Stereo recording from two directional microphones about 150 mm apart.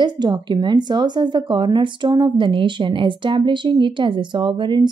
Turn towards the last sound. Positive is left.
turn(degrees=-30)  # may be behind; listen again after turning